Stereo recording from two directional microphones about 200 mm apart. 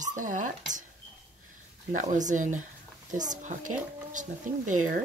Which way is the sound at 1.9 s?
40° right (ahead or behind).